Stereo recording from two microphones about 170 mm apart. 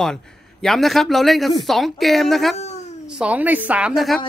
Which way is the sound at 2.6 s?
40° left (ahead or behind).